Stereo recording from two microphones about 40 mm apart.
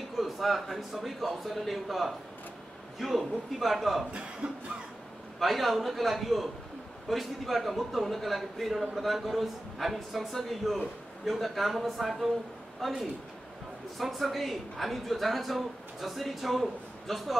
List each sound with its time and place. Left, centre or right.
0.2 s a man's voice: centre
4.4 s cough: right
5.4 s speech: centre